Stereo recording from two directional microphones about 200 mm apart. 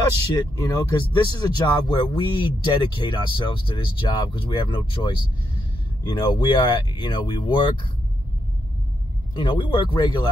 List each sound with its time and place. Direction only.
0.7 s speech: 20° left (ahead or behind)
9.3 s speech: 25° left (ahead or behind)